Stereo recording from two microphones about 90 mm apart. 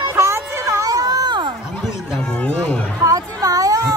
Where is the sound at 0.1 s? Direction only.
30° right (ahead or behind); by 1.4 s 50° right (ahead or behind).